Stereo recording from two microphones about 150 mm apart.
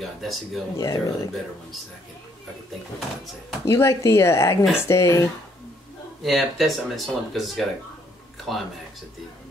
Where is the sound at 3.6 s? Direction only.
20° left (ahead or behind).